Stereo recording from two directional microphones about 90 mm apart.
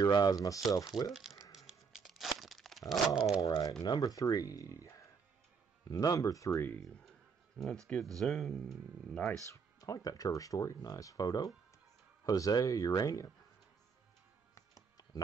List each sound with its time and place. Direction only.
0.0 s speech: 45° left (ahead or behind)
1.1 s tearing: centre (ahead or behind)
3.3 s speech: 40° left (ahead or behind)
6.8 s a sound: 5° left (ahead or behind)
8.2 s speech: 5° left (ahead or behind)
9.5 s speech: 40° left (ahead or behind)
14.5 s music: 35° left (ahead or behind)